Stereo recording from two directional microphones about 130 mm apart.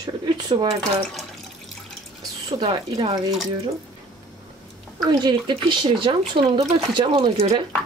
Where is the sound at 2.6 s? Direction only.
45° right (ahead or behind).